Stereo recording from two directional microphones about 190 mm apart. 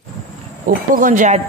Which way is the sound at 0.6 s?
45° right (ahead or behind).